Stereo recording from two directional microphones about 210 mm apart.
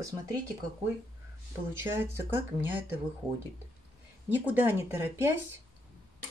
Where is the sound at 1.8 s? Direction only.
10° right (ahead or behind).